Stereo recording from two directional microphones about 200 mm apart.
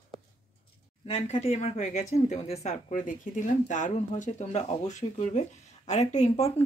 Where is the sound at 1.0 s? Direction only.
30° left (ahead or behind).